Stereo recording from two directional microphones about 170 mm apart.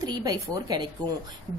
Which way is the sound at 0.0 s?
25° right (ahead or behind).